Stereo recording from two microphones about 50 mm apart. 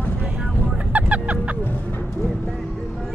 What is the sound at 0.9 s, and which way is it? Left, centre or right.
Music, right.